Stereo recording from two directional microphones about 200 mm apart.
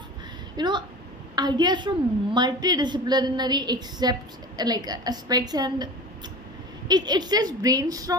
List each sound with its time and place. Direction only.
0.6 s a woman's voice: 20° right (ahead or behind)
6.9 s a woman's voice: 20° right (ahead or behind)